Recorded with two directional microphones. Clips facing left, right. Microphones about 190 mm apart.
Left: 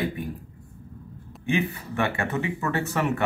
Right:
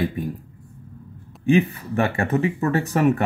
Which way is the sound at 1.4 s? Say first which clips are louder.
Right 8 dB; 35° right (ahead or behind).